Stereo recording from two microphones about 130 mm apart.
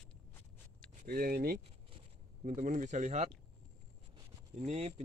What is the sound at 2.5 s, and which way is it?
Speech, 80° right.